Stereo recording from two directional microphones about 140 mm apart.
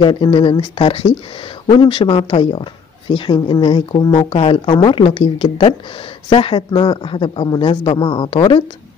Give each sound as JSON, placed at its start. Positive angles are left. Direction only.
{"t": 0.0, "sound": "speech", "side_deg": 35}